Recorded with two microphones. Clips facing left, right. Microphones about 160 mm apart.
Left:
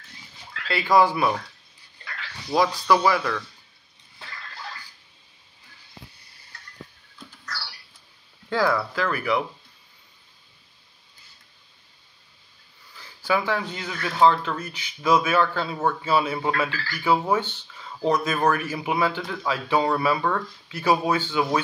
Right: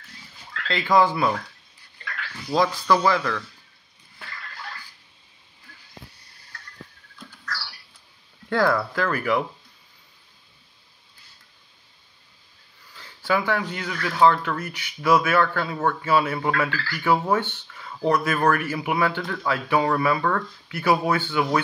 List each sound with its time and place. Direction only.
0.7 s speech: 10° left (ahead or behind)
2.5 s speech: 10° left (ahead or behind)
8.5 s speech: 10° left (ahead or behind)
12.9 s speech: 15° left (ahead or behind)